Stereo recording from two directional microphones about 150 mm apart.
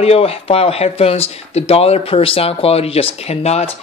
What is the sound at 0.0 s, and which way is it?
Speech, 40° left (ahead or behind).